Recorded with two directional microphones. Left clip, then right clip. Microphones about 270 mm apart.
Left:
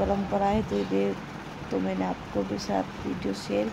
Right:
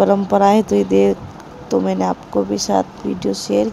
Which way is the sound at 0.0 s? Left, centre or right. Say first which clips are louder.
Right 13 dB; right.